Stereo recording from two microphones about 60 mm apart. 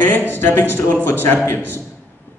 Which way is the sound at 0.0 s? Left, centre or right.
Left.